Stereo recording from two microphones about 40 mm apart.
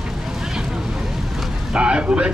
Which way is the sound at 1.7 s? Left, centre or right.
Right.